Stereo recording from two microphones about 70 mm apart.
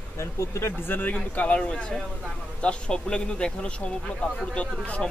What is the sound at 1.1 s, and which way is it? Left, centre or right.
Speech, centre.